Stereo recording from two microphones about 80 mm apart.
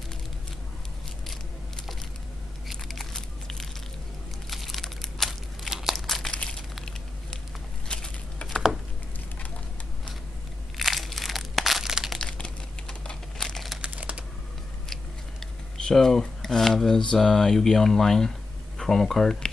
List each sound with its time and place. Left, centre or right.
2.7 s a sound: centre
4.5 s crumpling: centre
7.9 s a sound: centre
10.8 s crumpling: centre
12.2 s crumpling: centre
13.7 s computer keyboard: centre
15.9 s speech: centre